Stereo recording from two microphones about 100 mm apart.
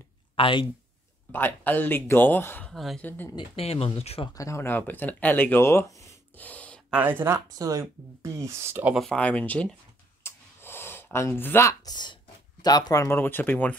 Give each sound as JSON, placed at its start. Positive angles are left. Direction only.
{"t": 0.4, "sound": "speech", "side_deg": 60}
{"t": 1.3, "sound": "speech", "side_deg": 20}
{"t": 2.7, "sound": "speech", "side_deg": 0}
{"t": 3.0, "sound": "speech", "side_deg": 20}
{"t": 3.3, "sound": "speech", "side_deg": 70}
{"t": 4.3, "sound": "speech", "side_deg": 30}
{"t": 6.3, "sound": "gasp", "side_deg": 15}
{"t": 6.9, "sound": "speech", "side_deg": -20}
{"t": 8.9, "sound": "speech", "side_deg": 5}
{"t": 10.2, "sound": "a sound", "side_deg": 25}
{"t": 11.8, "sound": "speech", "side_deg": 45}
{"t": 13.0, "sound": "speech", "side_deg": 20}